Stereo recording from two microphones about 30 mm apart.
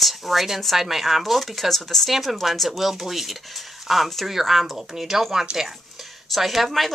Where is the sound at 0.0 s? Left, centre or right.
Centre.